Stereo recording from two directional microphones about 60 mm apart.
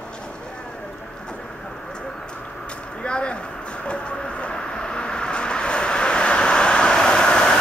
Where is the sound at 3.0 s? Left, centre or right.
Centre.